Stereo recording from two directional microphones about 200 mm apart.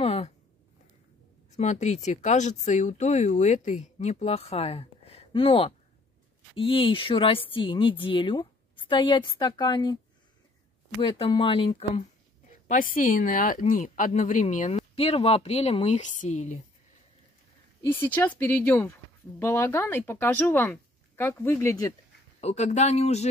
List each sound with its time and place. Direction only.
0.0 s a sound: 30° left (ahead or behind)
1.5 s speech: 35° left (ahead or behind)
11.0 s speech: 25° left (ahead or behind)
12.6 s speech: 45° left (ahead or behind)
17.8 s speech: 10° left (ahead or behind)
22.4 s speech: 35° left (ahead or behind)